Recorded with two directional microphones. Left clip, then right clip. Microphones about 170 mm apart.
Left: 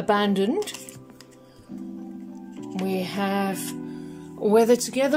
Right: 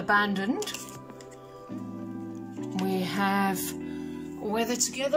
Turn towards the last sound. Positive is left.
turn(degrees=50)  # may be behind; listen again after turning